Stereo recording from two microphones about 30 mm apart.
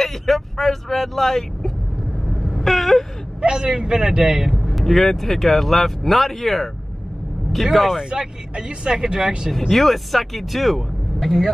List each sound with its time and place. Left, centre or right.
0.0 s speech: centre
2.2 s vehicle: centre
3.3 s speech: right
4.3 s speech: centre
4.8 s speech: centre
7.7 s speech: centre
8.1 s speech: right
9.5 s speech: centre